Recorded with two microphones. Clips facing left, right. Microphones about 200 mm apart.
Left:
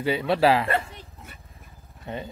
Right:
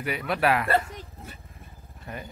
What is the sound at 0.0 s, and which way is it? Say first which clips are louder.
Speech: left 5 dB; 25° left (ahead or behind).